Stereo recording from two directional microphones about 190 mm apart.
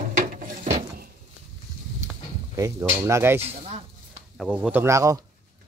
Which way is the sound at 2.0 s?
15° right (ahead or behind).